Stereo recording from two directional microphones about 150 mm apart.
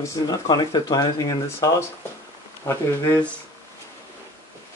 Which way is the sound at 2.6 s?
15° left (ahead or behind).